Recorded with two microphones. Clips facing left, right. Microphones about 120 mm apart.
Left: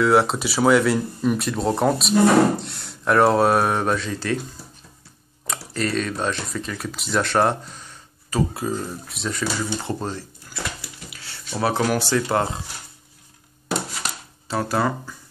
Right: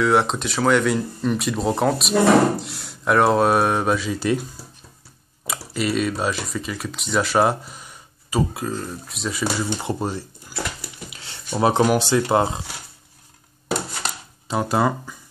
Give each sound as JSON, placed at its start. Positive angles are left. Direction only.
{"t": 0.0, "sound": "speech", "side_deg": 0}
{"t": 5.5, "sound": "speech", "side_deg": -5}
{"t": 8.5, "sound": "speech", "side_deg": 5}
{"t": 9.4, "sound": "speech", "side_deg": -15}
{"t": 14.5, "sound": "speech", "side_deg": -15}